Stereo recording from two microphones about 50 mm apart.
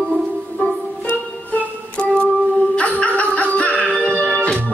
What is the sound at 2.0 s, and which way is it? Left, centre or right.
Music, left.